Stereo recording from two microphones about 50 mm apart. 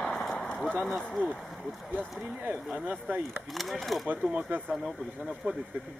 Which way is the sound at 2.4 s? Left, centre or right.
Right.